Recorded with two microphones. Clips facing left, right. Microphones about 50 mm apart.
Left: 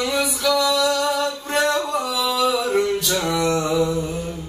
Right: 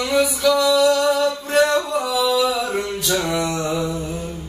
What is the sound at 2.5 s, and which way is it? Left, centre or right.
Male singing, centre.